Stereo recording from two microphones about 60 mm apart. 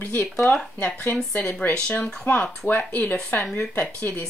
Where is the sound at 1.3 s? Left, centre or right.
Left.